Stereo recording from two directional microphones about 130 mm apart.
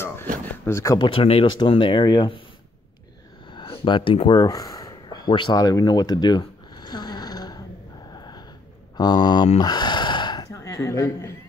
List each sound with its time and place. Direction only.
0.7 s speech: 20° left (ahead or behind)
0.9 s speech: 40° left (ahead or behind)
3.5 s a sound: 40° left (ahead or behind)
8.1 s sniff: 30° left (ahead or behind)
8.9 s speech: 30° left (ahead or behind)
9.6 s gasp: 35° left (ahead or behind)